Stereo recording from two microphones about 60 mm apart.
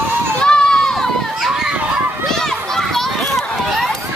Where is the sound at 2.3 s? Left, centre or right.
Centre.